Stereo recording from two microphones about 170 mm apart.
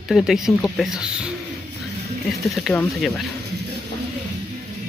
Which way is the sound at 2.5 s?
Centre (ahead or behind).